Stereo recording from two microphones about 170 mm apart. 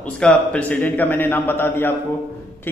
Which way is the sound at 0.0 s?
5° left (ahead or behind).